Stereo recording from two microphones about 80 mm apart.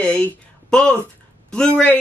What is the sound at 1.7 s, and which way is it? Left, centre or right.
Speech, left.